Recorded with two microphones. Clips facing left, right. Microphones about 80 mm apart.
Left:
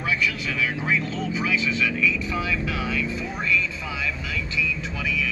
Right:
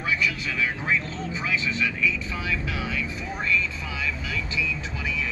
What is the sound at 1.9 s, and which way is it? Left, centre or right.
Speech, centre.